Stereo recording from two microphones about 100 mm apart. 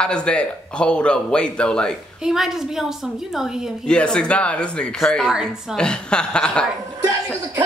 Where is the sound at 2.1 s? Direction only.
5° right (ahead or behind).